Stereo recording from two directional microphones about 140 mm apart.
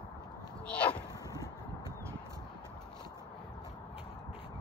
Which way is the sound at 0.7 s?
10° left (ahead or behind).